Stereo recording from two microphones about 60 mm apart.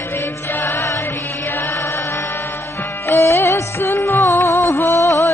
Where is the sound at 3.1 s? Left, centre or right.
Left.